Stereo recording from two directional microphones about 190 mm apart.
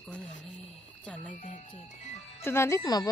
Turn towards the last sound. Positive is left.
turn(degrees=20)  # may be behind; listen again after turning